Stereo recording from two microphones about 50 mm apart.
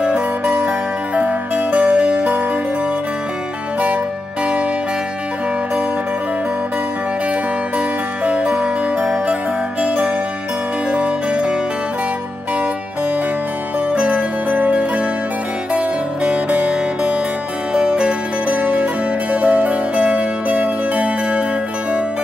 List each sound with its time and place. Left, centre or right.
0.0 s music: right
8.3 s music: right
13.9 s zither: right
15.7 s music: right
18.5 s zither: right
19.3 s music: right